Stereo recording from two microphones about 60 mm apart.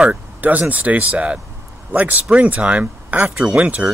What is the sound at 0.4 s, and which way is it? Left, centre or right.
Speech, right.